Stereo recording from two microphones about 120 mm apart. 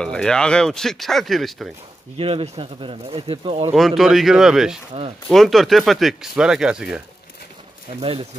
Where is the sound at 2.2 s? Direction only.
50° right (ahead or behind).